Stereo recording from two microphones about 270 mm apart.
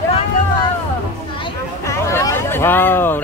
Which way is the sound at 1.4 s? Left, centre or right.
Centre.